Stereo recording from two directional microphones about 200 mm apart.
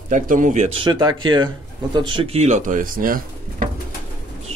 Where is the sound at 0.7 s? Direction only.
25° right (ahead or behind); by 3.7 s 45° right (ahead or behind).